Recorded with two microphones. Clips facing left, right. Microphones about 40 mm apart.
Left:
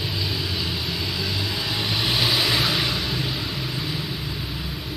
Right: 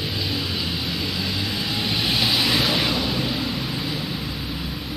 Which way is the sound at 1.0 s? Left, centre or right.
Centre.